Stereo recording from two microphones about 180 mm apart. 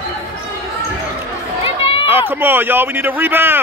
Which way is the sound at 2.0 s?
10° right (ahead or behind).